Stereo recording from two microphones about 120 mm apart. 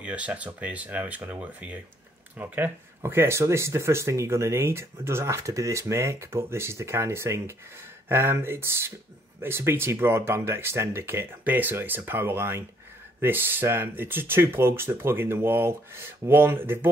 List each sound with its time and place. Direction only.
0.0 s speech: 10° right (ahead or behind)